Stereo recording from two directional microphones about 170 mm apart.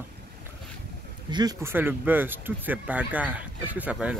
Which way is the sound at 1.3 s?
25° right (ahead or behind).